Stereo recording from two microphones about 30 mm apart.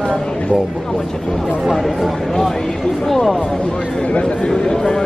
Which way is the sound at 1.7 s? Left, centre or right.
Centre.